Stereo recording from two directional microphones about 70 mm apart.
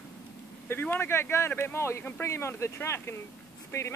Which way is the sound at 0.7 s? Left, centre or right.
Left.